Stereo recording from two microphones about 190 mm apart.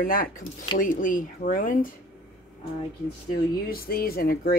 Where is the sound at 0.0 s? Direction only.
50° left (ahead or behind).